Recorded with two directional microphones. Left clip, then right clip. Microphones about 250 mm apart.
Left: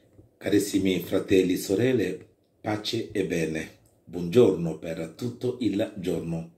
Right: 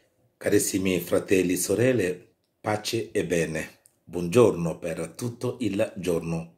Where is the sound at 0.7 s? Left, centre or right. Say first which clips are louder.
Right 1 dB; right.